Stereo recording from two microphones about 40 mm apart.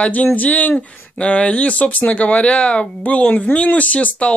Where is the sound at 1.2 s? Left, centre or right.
Left.